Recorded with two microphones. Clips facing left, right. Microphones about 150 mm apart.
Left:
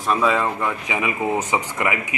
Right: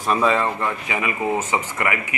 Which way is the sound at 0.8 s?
15° left (ahead or behind).